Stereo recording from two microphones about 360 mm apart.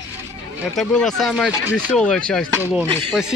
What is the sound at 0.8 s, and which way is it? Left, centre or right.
Speech, centre.